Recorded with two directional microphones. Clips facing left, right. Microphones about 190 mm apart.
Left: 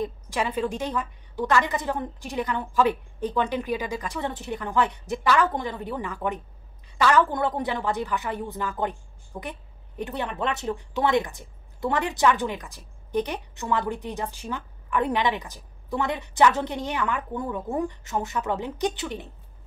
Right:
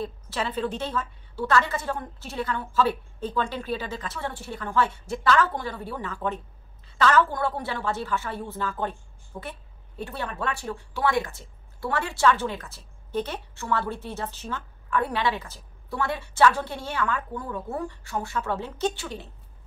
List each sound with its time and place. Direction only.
0.0 s speech: 15° left (ahead or behind)